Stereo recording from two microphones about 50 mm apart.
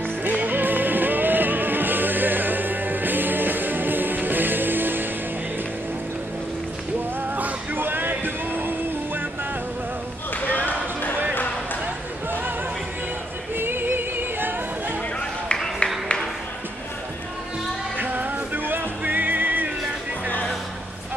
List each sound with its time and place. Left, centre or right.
0.0 s music: right
7.2 s music: right
10.3 s basketball bounce: left
11.8 s a sound: right
13.6 s music: right
15.8 s a sound: left
17.9 s music: right